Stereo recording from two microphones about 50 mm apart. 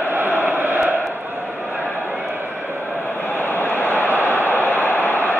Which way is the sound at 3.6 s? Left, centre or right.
Left.